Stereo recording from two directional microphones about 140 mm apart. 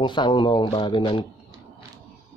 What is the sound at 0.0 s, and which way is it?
Speech, 35° left (ahead or behind).